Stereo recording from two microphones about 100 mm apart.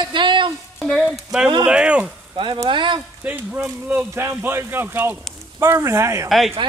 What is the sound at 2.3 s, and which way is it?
Speech, 55° right (ahead or behind).